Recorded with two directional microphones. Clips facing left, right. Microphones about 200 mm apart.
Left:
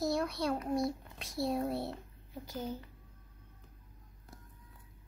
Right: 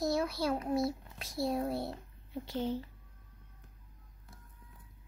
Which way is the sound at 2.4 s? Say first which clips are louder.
Right 5 dB; 25° right (ahead or behind).